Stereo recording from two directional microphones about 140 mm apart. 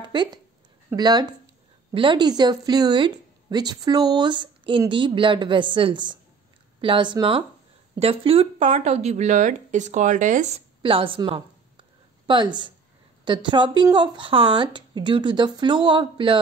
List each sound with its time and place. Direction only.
0.0 s a woman's voice: 30° right (ahead or behind); by 10.6 s 60° right (ahead or behind)
10.8 s a woman's voice: 40° right (ahead or behind)